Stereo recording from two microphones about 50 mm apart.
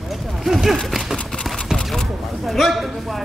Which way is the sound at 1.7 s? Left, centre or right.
Centre.